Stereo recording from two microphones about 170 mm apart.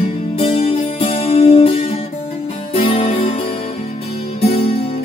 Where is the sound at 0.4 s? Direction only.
35° left (ahead or behind).